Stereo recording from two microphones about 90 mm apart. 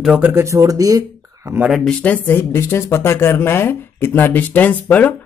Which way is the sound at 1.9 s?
15° left (ahead or behind).